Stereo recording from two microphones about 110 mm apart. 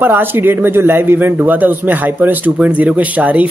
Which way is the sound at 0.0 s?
20° right (ahead or behind).